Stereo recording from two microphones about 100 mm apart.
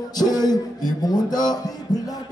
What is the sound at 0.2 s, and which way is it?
Music, 40° left (ahead or behind).